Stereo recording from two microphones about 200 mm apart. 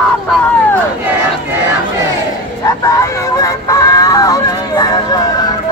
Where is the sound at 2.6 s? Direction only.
15° left (ahead or behind).